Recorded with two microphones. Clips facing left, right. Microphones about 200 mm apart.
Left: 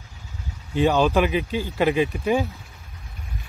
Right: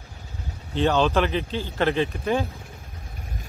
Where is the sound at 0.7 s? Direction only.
10° left (ahead or behind).